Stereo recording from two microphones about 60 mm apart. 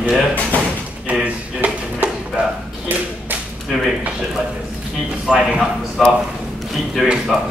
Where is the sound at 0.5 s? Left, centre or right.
Left.